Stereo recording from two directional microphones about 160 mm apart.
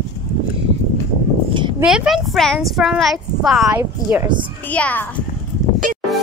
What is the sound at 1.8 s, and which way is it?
Speech, 5° right (ahead or behind).